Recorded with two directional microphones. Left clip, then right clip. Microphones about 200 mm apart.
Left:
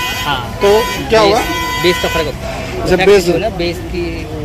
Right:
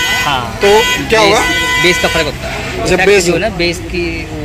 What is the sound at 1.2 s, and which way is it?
Speech, 20° right (ahead or behind).